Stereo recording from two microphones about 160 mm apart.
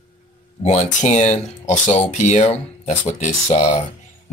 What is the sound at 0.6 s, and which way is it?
Speech, 45° left (ahead or behind).